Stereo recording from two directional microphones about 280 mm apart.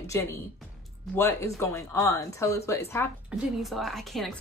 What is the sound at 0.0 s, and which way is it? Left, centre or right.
A woman's voice, centre.